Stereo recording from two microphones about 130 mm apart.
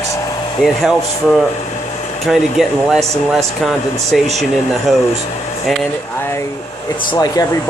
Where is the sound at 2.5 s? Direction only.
5° right (ahead or behind).